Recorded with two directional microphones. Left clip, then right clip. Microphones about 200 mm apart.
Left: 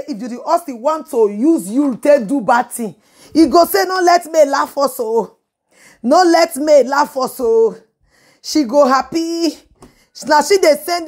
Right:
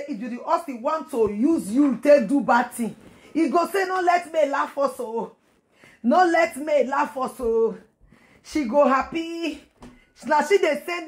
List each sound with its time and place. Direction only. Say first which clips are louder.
0.1 s speech: left 8 dB; 35° left (ahead or behind)
3.3 s speech: left 11 dB; 40° left (ahead or behind)
4.8 s speech: left 10 dB; 50° left (ahead or behind)
6.0 s speech: left 8 dB; 40° left (ahead or behind)
8.4 s a woman's voice: left 8 dB; 30° left (ahead or behind)